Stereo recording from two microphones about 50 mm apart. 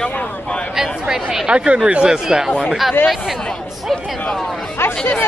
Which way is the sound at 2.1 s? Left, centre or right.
Centre.